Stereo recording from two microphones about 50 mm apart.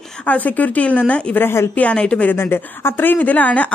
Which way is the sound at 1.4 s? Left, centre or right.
Left.